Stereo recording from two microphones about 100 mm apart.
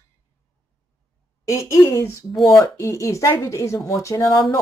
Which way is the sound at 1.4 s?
30° left (ahead or behind).